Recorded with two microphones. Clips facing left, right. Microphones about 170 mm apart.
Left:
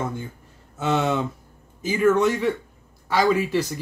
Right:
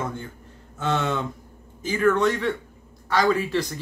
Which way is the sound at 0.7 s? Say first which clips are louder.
Left 3 dB; 10° left (ahead or behind).